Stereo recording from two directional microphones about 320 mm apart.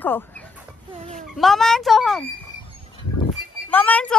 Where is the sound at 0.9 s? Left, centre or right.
Right.